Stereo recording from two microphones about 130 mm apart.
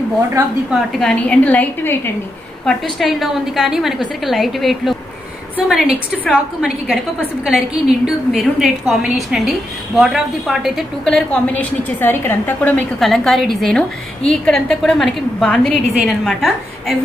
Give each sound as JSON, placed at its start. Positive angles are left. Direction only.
{"t": 0.7, "sound": "a woman's voice", "side_deg": 5}
{"t": 2.6, "sound": "a woman's voice", "side_deg": 0}
{"t": 12.0, "sound": "a woman's voice", "side_deg": 15}